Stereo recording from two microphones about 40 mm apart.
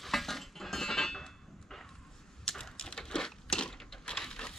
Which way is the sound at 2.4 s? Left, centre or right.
Centre.